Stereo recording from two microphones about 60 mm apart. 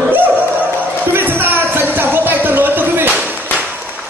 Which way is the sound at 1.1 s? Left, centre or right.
Right.